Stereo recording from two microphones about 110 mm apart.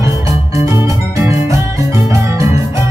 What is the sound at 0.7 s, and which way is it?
Music, 25° right (ahead or behind).